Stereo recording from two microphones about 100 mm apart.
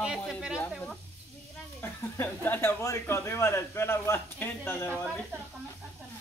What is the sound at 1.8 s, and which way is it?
Speech, 20° left (ahead or behind).